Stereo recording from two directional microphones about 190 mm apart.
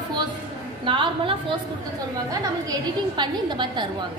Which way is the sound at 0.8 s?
25° right (ahead or behind).